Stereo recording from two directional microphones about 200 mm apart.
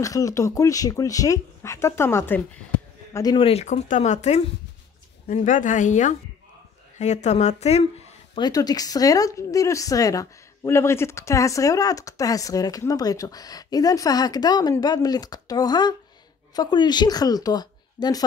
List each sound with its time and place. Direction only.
0.0 s a woman's voice: 15° left (ahead or behind); by 7.5 s 35° left (ahead or behind)
7.6 s a sound: 30° left (ahead or behind)
8.5 s a woman's voice: 20° left (ahead or behind)